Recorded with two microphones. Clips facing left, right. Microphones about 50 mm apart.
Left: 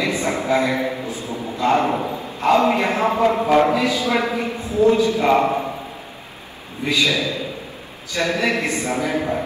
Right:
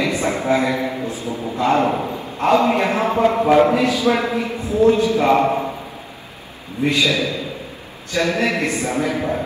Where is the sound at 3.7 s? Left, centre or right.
Right.